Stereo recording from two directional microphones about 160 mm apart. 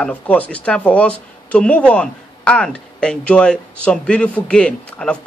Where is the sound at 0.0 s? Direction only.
10° left (ahead or behind).